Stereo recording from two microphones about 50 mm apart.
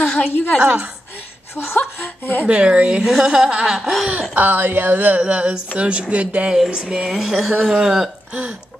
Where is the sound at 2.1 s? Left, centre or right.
Left.